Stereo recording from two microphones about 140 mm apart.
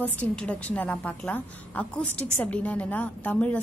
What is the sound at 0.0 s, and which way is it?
A woman's voice, 10° left (ahead or behind).